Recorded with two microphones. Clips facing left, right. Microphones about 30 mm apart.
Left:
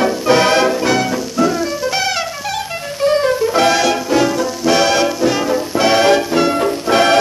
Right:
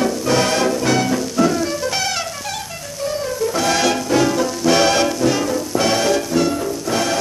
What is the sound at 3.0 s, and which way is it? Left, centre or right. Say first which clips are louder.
Music: left 9 dB; left.